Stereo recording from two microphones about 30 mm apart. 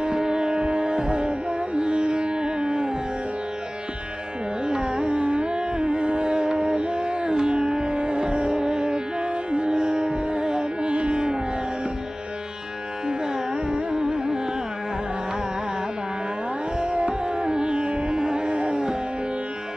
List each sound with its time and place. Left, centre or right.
0.0 s music: right
4.6 s music: right
13.2 s music: right
13.9 s carnatic music: right
16.7 s music: right
18.5 s music: right